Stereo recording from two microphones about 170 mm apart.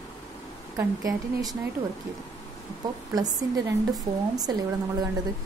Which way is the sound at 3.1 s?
25° right (ahead or behind).